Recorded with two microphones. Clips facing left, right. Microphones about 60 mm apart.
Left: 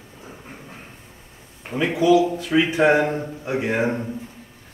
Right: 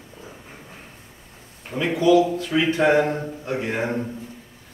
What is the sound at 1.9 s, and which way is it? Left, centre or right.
Speech, centre.